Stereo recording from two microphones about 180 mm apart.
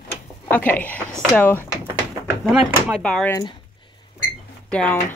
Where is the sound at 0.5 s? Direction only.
10° left (ahead or behind).